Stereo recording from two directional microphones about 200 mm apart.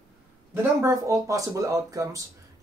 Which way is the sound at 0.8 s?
15° right (ahead or behind).